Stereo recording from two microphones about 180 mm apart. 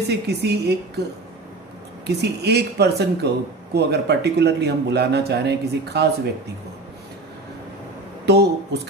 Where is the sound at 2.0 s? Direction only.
65° right (ahead or behind).